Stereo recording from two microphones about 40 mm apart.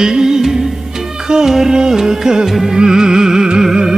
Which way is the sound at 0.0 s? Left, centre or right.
Centre.